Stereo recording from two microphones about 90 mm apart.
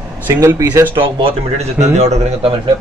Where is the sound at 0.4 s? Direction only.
35° right (ahead or behind).